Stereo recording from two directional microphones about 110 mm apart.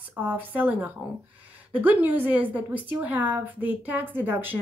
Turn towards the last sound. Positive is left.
turn(degrees=-20)  # may be behind; listen again after turning